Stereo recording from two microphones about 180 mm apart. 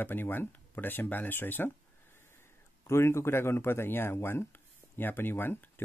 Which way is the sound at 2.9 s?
15° left (ahead or behind).